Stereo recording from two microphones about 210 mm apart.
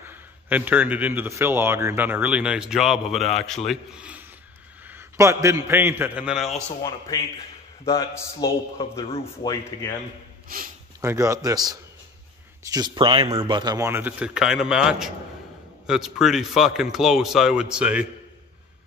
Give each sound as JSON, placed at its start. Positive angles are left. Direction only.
{"t": 0.0, "sound": "a man's voice", "side_deg": -10}
{"t": 7.8, "sound": "a man's voice", "side_deg": 15}
{"t": 10.5, "sound": "speech", "side_deg": -45}
{"t": 11.0, "sound": "a man's voice", "side_deg": -15}